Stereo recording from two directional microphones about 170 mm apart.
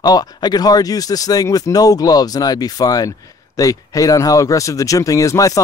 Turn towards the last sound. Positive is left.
turn(degrees=20)  # may be behind; listen again after turning